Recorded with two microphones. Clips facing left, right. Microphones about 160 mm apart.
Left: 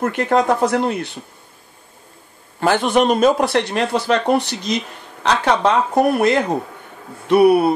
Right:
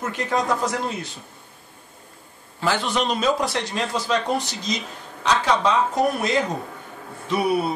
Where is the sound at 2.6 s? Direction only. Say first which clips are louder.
Left 7 dB; 55° left (ahead or behind).